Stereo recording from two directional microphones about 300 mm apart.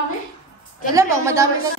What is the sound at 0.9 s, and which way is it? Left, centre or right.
Speech, centre.